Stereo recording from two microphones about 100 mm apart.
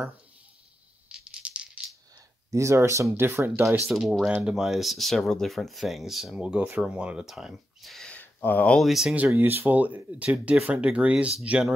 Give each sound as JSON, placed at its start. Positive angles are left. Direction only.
{"t": 1.0, "sound": "a sound", "side_deg": -10}
{"t": 2.5, "sound": "speech", "side_deg": -30}
{"t": 3.9, "sound": "speech", "side_deg": 0}
{"t": 8.1, "sound": "a sound", "side_deg": 20}
{"t": 8.7, "sound": "speech", "side_deg": 0}
{"t": 9.3, "sound": "speech", "side_deg": -20}